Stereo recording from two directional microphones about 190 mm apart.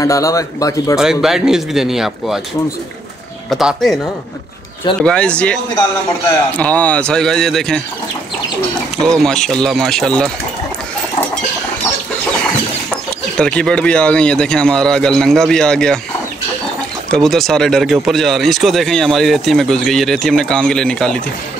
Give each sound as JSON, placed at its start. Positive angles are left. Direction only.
{"t": 0.0, "sound": "speech", "side_deg": 15}
{"t": 0.9, "sound": "speech", "side_deg": 0}
{"t": 3.4, "sound": "speech", "side_deg": 0}
{"t": 5.0, "sound": "speech", "side_deg": 5}
{"t": 9.2, "sound": "speech", "side_deg": 5}
{"t": 12.9, "sound": "speech", "side_deg": 5}
{"t": 17.1, "sound": "speech", "side_deg": 0}